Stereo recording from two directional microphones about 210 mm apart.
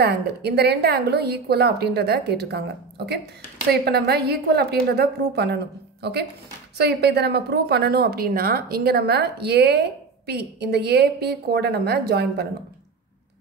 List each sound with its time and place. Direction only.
0.0 s a woman's voice: 50° right (ahead or behind)
3.7 s a woman's voice: 50° right (ahead or behind)